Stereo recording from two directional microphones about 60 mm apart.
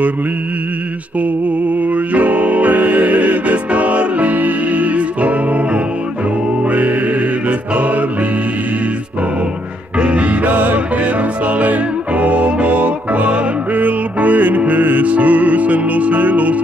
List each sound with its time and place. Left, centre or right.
2.1 s music: right
9.9 s music: centre